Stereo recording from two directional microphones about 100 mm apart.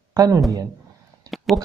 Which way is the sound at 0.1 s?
40° right (ahead or behind).